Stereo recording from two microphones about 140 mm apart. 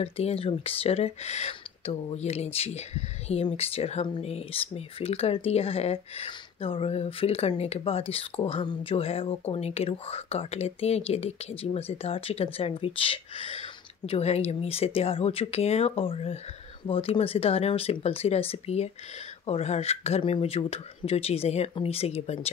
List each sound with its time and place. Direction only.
0.0 s speech: 45° left (ahead or behind)